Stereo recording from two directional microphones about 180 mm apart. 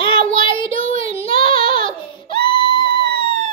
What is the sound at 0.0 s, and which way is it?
Child singing, 30° left (ahead or behind).